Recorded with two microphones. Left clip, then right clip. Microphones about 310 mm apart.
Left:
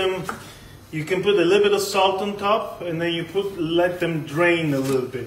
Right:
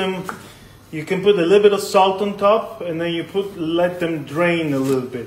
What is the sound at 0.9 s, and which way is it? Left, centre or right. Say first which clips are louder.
A man's voice: right 3 dB; right.